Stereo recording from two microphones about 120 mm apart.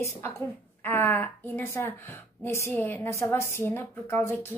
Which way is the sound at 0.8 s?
15° left (ahead or behind).